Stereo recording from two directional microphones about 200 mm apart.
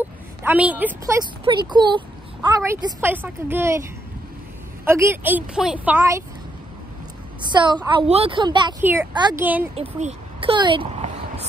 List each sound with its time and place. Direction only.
0.4 s a woman's voice: 10° right (ahead or behind)
1.4 s a woman's voice: 25° right (ahead or behind)
4.8 s a woman's voice: 15° right (ahead or behind)
7.4 s a woman's voice: 20° right (ahead or behind)
8.8 s a woman's voice: 10° right (ahead or behind)
9.8 s a sound: 35° right (ahead or behind)